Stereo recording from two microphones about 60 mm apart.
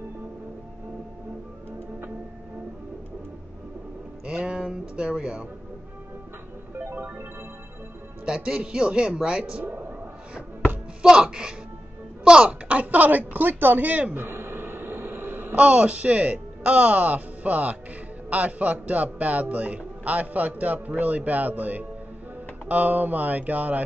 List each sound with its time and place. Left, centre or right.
4.3 s a sound: centre
6.8 s music: right
8.3 s speech: centre
11.0 s a man's voice: centre
14.2 s a sound: right
15.6 s a man's voice: right